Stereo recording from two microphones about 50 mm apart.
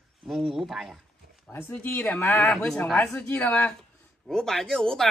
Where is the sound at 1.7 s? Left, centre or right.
Left.